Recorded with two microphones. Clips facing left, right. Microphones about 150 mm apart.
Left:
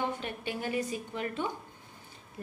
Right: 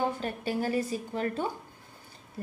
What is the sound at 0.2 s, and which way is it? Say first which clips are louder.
A woman's voice: right 5 dB; 40° right (ahead or behind).